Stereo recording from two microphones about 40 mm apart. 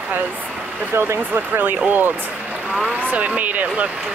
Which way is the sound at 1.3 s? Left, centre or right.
Right.